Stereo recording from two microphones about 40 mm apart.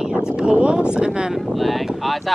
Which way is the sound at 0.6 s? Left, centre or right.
Right.